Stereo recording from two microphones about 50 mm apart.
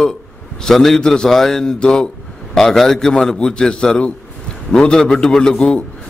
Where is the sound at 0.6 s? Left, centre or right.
Centre.